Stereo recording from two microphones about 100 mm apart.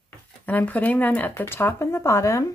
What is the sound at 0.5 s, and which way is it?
Speech, 15° left (ahead or behind).